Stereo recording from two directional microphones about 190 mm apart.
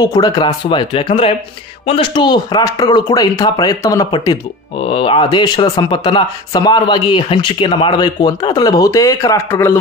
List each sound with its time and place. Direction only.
0.0 s speech: 20° left (ahead or behind)